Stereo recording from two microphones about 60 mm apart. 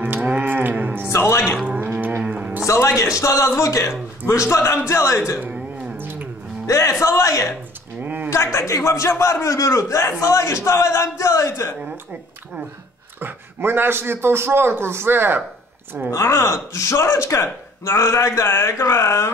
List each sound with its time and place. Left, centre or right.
0.0 s moo: right
0.5 s cattle: right
1.0 s speech: left
1.4 s speech: centre
2.0 s a sound: right
2.2 s music: right
2.6 s a man's voice: left
5.4 s a sound: right
6.6 s a man's voice: left
8.0 s a sound: right
8.3 s a man's voice: left
13.2 s a man's voice: right
16.1 s speech: left